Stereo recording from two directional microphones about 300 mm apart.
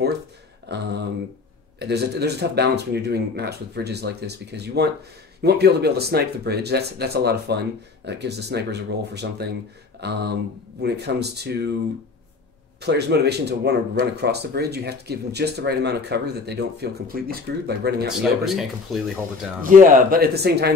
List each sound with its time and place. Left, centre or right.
0.7 s a sound: right
1.8 s speech: right
9.9 s a sound: right
10.8 s speech: right
12.8 s speech: right
18.0 s speech: centre
19.6 s speech: right